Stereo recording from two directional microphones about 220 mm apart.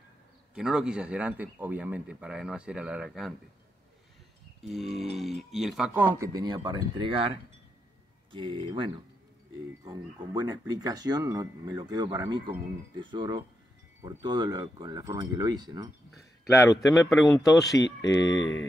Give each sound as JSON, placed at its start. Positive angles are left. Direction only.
{"t": 0.6, "sound": "speech", "side_deg": -5}
{"t": 4.6, "sound": "speech", "side_deg": 0}
{"t": 16.2, "sound": "a sound", "side_deg": 15}
{"t": 16.7, "sound": "speech", "side_deg": 0}
{"t": 18.0, "sound": "speech", "side_deg": 15}
{"t": 18.4, "sound": "music", "side_deg": 60}